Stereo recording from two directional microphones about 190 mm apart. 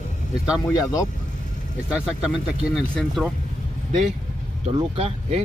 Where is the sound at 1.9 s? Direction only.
5° right (ahead or behind).